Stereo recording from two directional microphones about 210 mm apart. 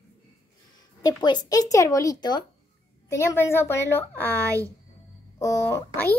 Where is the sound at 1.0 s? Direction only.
20° left (ahead or behind).